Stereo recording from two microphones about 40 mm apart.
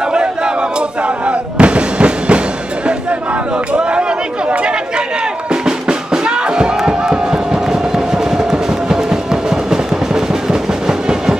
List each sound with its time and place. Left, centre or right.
0.0 s artillery fire: right
2.9 s a sound: right
4.5 s chatter: right
5.5 s music: centre